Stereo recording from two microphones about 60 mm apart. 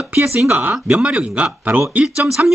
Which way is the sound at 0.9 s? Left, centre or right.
Centre.